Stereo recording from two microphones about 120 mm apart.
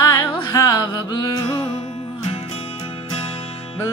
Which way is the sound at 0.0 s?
30° left (ahead or behind).